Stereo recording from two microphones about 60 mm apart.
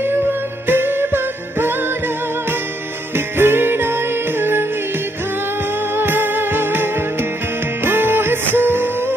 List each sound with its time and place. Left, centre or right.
0.7 s music: right
3.3 s music: right
5.9 s music: right